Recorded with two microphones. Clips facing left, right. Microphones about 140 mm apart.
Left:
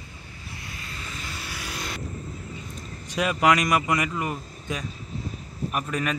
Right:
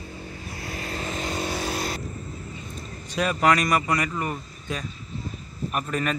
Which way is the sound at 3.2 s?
10° left (ahead or behind).